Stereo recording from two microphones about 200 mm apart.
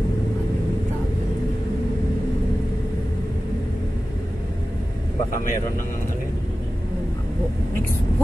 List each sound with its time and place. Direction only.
5.3 s a man's voice: 40° left (ahead or behind)